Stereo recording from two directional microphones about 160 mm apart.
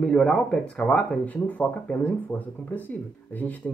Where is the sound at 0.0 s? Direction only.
5° left (ahead or behind).